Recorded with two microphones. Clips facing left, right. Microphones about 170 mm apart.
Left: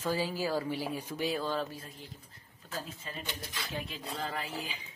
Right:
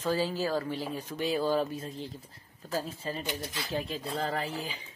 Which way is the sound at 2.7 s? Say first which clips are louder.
Right 7 dB; 35° right (ahead or behind).